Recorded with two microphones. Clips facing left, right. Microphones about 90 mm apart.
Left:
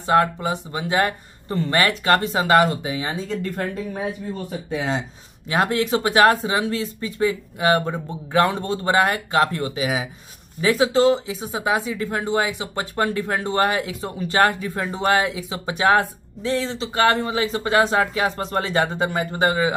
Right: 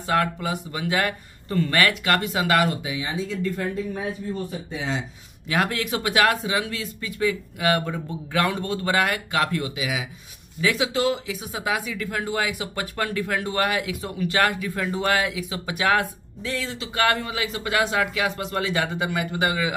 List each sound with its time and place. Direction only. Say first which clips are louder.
0.0 s speech: left 5 dB; 25° left (ahead or behind)
2.9 s speech: left 2 dB; 45° left (ahead or behind)
4.6 s speech: left 7 dB; 50° left (ahead or behind)
5.5 s speech: left 4 dB; 25° left (ahead or behind)